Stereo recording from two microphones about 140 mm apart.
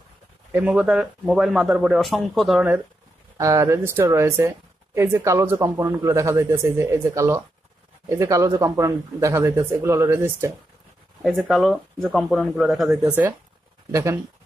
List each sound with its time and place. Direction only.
0.5 s speech: 10° right (ahead or behind)
3.3 s speech: 20° right (ahead or behind)
11.3 s speech: centre (ahead or behind)